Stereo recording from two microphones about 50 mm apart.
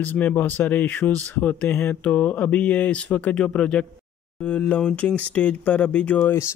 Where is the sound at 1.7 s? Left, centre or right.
Left.